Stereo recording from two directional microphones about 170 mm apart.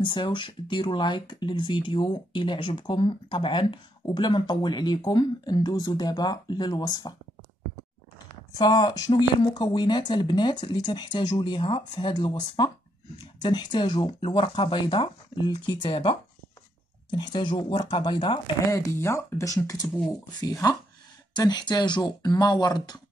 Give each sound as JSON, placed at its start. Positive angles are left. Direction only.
{"t": 0.0, "sound": "speech", "side_deg": 25}
{"t": 8.5, "sound": "speech", "side_deg": 25}